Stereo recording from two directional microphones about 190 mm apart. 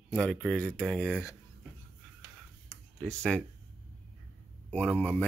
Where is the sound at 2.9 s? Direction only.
5° left (ahead or behind).